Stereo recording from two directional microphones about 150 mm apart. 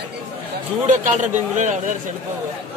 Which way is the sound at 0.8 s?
55° right (ahead or behind).